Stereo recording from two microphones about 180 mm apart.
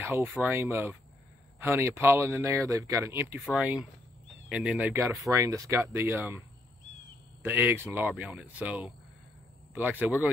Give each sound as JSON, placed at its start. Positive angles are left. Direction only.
{"t": 0.0, "sound": "speech", "side_deg": -10}
{"t": 7.4, "sound": "speech", "side_deg": -10}
{"t": 8.1, "sound": "speech", "side_deg": 0}